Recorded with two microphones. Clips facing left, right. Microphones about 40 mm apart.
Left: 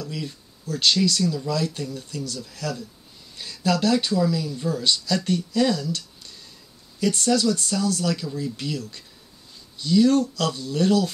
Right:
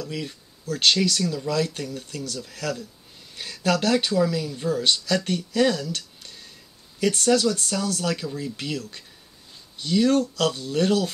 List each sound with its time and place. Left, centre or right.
0.0 s speech: right
1.5 s speech: right